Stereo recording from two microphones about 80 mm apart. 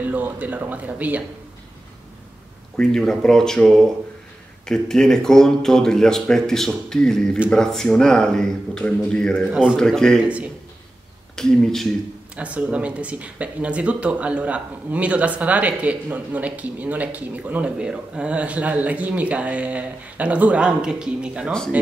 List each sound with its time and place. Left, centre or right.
0.0 s speech: right
2.8 s speech: centre
9.5 s speech: centre
9.8 s speech: centre
10.2 s speech: centre
11.3 s speech: centre
12.4 s speech: centre